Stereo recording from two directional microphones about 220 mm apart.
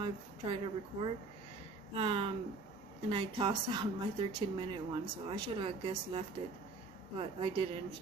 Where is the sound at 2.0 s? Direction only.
20° right (ahead or behind).